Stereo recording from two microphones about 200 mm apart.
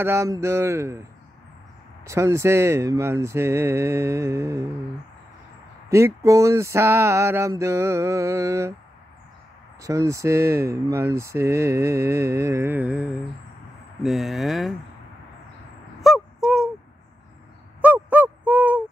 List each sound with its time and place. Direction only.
0.0 s speech: 15° right (ahead or behind)
2.0 s speech: 15° right (ahead or behind)
5.9 s speech: 15° right (ahead or behind)
9.8 s speech: 15° right (ahead or behind); by 14.8 s centre (ahead or behind)
16.0 s a sound: centre (ahead or behind)
17.8 s a sound: 10° right (ahead or behind)